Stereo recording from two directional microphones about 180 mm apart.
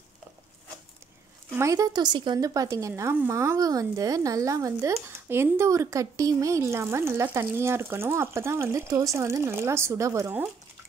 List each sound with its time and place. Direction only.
1.5 s a woman's voice: 15° right (ahead or behind)